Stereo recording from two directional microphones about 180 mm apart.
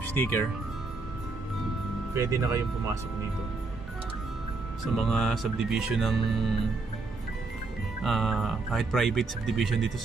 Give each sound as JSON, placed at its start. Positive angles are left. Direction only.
{"t": 0.2, "sound": "speech", "side_deg": 10}
{"t": 2.1, "sound": "speech", "side_deg": -15}
{"t": 4.9, "sound": "speech", "side_deg": 5}
{"t": 8.0, "sound": "speech", "side_deg": 0}